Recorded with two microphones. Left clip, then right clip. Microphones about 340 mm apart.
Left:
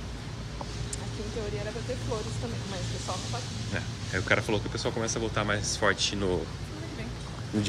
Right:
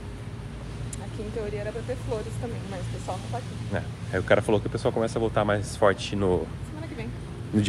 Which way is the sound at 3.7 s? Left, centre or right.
Centre.